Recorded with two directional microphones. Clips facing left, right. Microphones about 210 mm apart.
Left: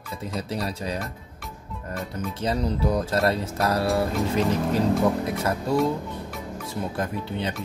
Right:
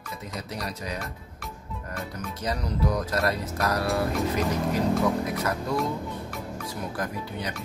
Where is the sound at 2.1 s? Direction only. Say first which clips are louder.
Left 6 dB; 25° left (ahead or behind).